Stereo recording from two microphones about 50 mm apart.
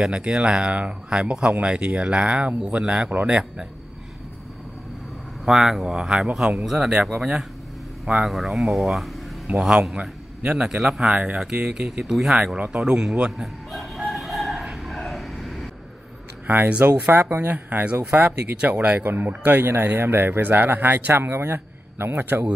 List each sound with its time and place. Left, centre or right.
0.3 s speech: centre
5.4 s speech: centre
9.6 s a man's voice: centre
13.4 s chicken: centre
14.6 s a sound: centre
16.4 s speech: right
19.0 s speech: right
21.1 s a man's voice: right